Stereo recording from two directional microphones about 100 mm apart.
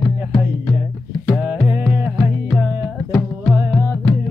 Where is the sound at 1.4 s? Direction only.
20° right (ahead or behind).